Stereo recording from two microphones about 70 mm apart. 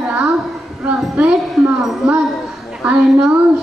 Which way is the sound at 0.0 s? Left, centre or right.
Centre.